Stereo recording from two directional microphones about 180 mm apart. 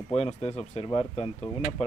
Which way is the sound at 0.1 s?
35° left (ahead or behind).